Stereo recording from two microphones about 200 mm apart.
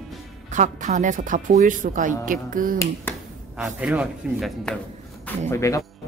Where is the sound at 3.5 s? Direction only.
5° right (ahead or behind).